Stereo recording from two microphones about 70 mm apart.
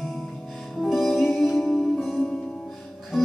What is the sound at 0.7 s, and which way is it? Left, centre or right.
Music, centre.